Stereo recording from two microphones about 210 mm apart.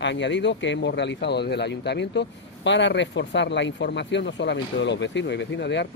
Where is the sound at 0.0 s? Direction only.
55° left (ahead or behind).